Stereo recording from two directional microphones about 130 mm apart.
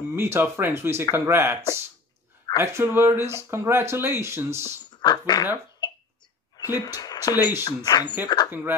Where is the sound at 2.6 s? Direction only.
20° right (ahead or behind).